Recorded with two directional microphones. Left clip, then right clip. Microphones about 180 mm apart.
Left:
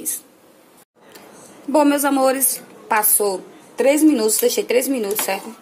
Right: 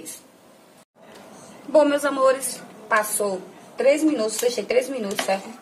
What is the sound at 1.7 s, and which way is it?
A woman's voice, 35° left (ahead or behind).